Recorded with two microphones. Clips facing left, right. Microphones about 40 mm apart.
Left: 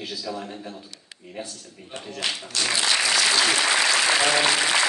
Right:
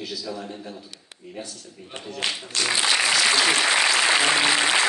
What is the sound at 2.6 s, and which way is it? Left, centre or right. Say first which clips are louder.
Applause: right 1 dB; centre.